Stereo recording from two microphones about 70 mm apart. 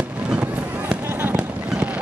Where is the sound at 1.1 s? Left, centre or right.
Right.